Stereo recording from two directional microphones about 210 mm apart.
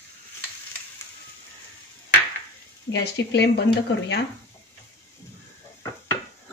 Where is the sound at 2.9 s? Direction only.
55° left (ahead or behind).